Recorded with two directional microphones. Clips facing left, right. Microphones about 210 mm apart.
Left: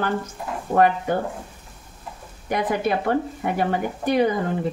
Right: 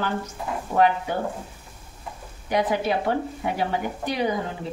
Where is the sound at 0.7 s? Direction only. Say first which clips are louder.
Left 3 dB; 50° left (ahead or behind).